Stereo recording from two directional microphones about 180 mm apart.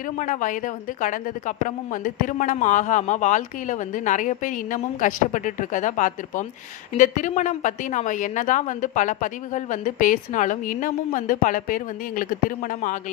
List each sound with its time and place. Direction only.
0.2 s a woman's voice: 45° left (ahead or behind)